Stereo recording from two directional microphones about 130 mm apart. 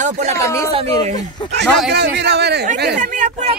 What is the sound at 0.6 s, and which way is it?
Speech, 50° right (ahead or behind).